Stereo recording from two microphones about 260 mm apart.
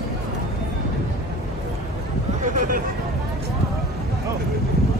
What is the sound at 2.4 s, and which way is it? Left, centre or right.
Hubbub, right.